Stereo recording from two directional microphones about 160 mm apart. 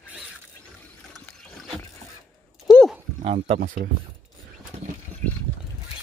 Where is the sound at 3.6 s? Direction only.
55° right (ahead or behind).